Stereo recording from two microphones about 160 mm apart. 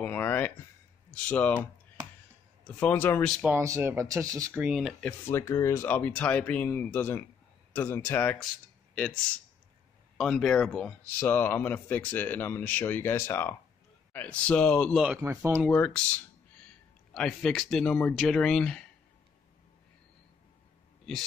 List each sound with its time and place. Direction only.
0.0 s a sound: 10° left (ahead or behind)
1.1 s speech: 10° left (ahead or behind)
3.5 s speech: 15° right (ahead or behind)
4.6 s speech: 5° right (ahead or behind)
5.0 s speech: 15° left (ahead or behind)
15.1 s speech: 15° right (ahead or behind)
15.7 s speech: 10° left (ahead or behind)
17.1 s speech: 5° left (ahead or behind)